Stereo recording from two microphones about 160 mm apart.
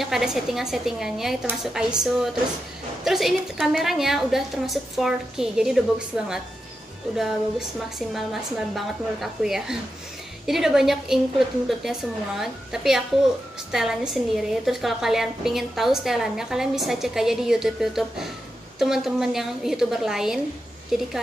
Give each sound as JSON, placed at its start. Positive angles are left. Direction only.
{"t": 0.0, "sound": "a woman's voice", "side_deg": 0}
{"t": 3.0, "sound": "a woman's voice", "side_deg": 0}